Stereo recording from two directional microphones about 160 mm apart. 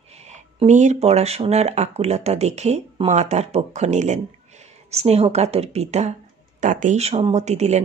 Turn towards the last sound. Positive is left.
turn(degrees=-45)  # may be behind; listen again after turning